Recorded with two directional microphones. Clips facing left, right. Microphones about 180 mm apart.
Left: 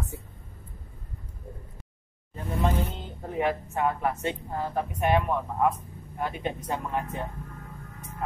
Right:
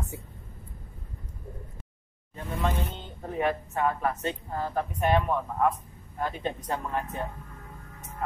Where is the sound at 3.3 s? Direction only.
15° left (ahead or behind).